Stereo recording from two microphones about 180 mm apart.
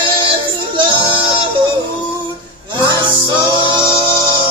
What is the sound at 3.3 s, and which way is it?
Singing, 25° right (ahead or behind).